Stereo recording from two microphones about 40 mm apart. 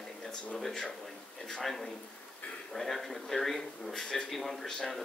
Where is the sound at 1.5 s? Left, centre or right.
Centre.